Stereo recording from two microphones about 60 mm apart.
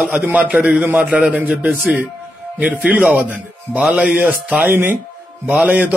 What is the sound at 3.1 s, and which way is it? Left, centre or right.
A man's voice, right.